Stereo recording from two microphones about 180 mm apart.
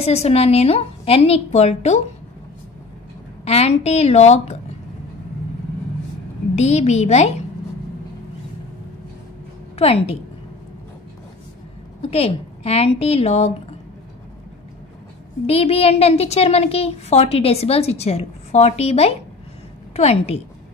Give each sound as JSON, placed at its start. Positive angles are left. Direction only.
{"t": 0.0, "sound": "a woman's voice", "side_deg": 35}
{"t": 3.4, "sound": "a woman's voice", "side_deg": 35}
{"t": 6.5, "sound": "a woman's voice", "side_deg": 40}
{"t": 9.8, "sound": "a woman's voice", "side_deg": 35}
{"t": 12.0, "sound": "a woman's voice", "side_deg": 35}
{"t": 15.4, "sound": "a woman's voice", "side_deg": 35}